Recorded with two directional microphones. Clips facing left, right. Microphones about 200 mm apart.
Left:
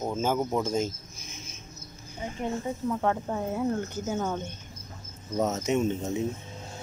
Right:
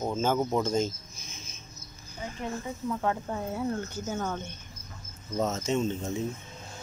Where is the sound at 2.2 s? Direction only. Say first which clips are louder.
Left 3 dB; 25° left (ahead or behind).